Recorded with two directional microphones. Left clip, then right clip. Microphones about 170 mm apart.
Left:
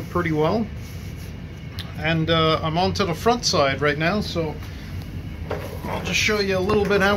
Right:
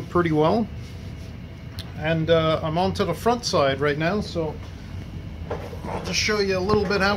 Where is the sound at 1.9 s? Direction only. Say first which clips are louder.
Even; 50° right (ahead or behind).